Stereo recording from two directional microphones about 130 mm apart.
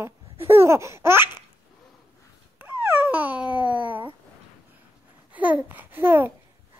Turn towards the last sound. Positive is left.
turn(degrees=-15)  # may be behind; listen again after turning